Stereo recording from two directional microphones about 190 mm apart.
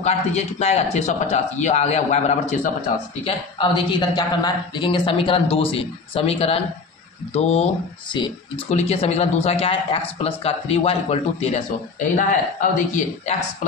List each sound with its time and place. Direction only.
0.0 s speech: 35° left (ahead or behind)
3.3 s a man's voice: 25° left (ahead or behind)
12.7 s speech: 40° left (ahead or behind)